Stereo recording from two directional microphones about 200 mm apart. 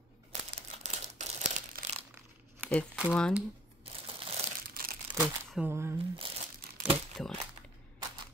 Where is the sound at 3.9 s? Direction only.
30° right (ahead or behind).